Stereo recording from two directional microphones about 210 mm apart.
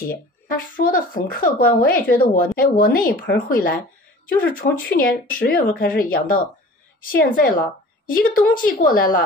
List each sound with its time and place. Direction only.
0.0 s speech: 40° left (ahead or behind)